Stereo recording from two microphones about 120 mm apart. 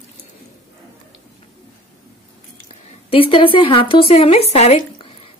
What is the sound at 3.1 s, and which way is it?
Speech, 50° left (ahead or behind).